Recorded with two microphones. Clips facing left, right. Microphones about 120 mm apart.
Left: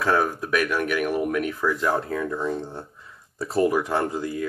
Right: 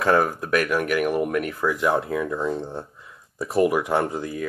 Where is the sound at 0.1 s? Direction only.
10° right (ahead or behind).